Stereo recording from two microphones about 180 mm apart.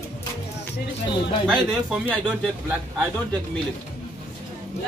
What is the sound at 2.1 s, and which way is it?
Speech, 10° right (ahead or behind).